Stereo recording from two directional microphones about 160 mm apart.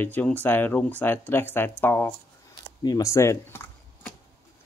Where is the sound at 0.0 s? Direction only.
10° left (ahead or behind).